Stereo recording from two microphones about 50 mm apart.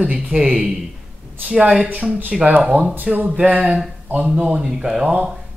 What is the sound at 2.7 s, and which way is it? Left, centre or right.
Speech, right.